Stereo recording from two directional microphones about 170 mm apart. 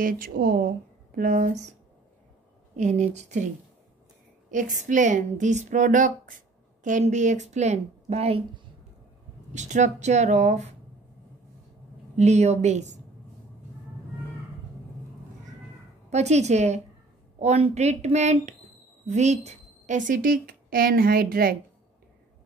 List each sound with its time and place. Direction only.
0.0 s a woman's voice: 60° right (ahead or behind); by 3.4 s 45° right (ahead or behind)
4.5 s a woman's voice: 50° right (ahead or behind)
9.5 s a woman's voice: 45° right (ahead or behind)
12.2 s a woman's voice: 40° right (ahead or behind)
16.1 s a woman's voice: 40° right (ahead or behind); by 21.5 s 60° right (ahead or behind)